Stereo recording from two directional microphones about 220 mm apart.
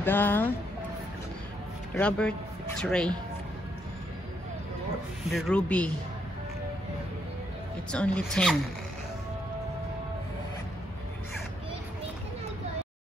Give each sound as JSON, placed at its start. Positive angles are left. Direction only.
{"t": 0.0, "sound": "speech", "side_deg": 10}
{"t": 2.0, "sound": "speech", "side_deg": 5}
{"t": 5.3, "sound": "speech", "side_deg": 5}
{"t": 7.9, "sound": "speech", "side_deg": 5}